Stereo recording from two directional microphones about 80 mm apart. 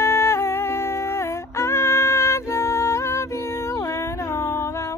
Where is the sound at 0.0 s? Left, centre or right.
Left.